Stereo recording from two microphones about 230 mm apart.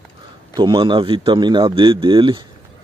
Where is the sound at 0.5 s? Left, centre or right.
Centre.